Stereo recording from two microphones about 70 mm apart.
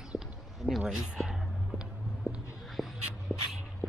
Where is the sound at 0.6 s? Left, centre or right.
Centre.